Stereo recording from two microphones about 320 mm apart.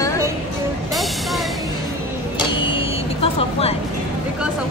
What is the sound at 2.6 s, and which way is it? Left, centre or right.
Vehicle, centre.